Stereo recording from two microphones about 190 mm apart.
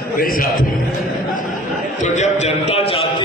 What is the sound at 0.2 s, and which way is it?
Speech, 50° left (ahead or behind).